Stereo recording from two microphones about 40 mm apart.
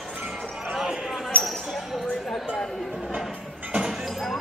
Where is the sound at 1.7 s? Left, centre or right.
Centre.